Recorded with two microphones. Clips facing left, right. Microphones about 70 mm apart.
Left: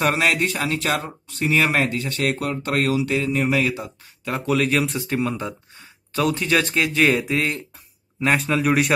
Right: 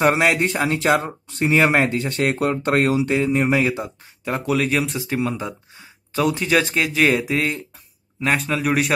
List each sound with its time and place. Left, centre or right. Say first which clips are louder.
0.0 s speech: right 3 dB; centre
4.2 s speech: even; centre